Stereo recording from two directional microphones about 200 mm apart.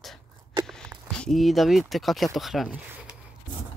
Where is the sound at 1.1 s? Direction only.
Centre (ahead or behind).